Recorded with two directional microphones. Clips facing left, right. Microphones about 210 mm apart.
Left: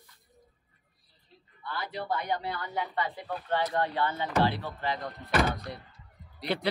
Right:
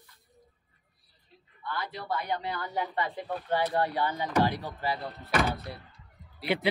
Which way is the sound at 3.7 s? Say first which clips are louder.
Right 1 dB; 10° right (ahead or behind).